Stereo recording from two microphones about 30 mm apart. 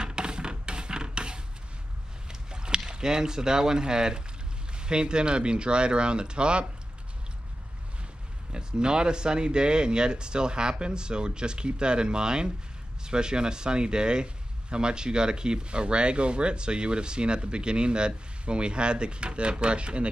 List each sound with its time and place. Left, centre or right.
0.0 s music: right
2.5 s rowboat: right
2.9 s speech: right
8.5 s speech: right